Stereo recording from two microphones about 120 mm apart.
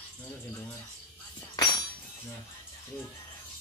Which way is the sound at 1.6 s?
35° left (ahead or behind).